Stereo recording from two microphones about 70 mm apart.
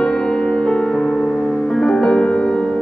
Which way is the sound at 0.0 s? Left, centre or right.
Centre.